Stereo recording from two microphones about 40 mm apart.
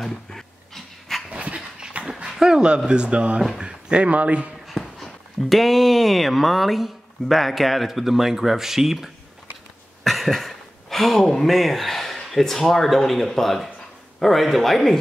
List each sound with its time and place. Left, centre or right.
0.0 s dog: centre
1.3 s dog: right
2.2 s a sound: centre
2.9 s speech: right
3.5 s a sound: right
4.0 s speech: right
4.6 s speech: centre